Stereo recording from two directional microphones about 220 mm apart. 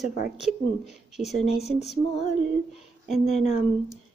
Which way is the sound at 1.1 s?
Centre (ahead or behind).